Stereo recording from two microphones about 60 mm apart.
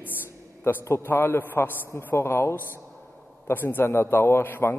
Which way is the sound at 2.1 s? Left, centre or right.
Left.